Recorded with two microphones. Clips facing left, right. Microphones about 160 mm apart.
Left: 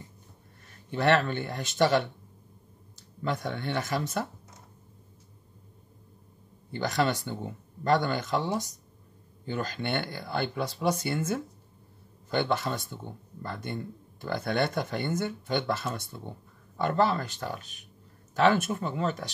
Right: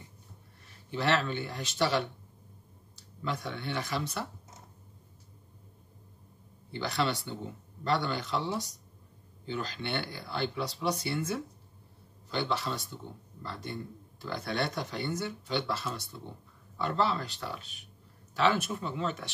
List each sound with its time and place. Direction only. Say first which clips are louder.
0.9 s a man's voice: left 5 dB; 50° left (ahead or behind)
6.7 s a man's voice: left 4 dB; 45° left (ahead or behind)